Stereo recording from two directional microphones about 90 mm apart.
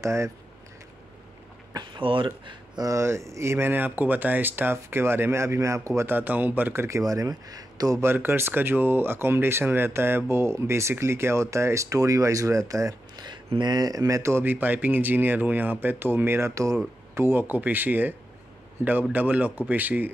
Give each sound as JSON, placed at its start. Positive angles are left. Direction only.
{"t": 0.0, "sound": "speech", "side_deg": -30}
{"t": 2.0, "sound": "speech", "side_deg": -70}
{"t": 2.8, "sound": "speech", "side_deg": -35}
{"t": 6.1, "sound": "speech", "side_deg": -20}
{"t": 8.0, "sound": "speech", "side_deg": -25}
{"t": 19.1, "sound": "speech", "side_deg": -20}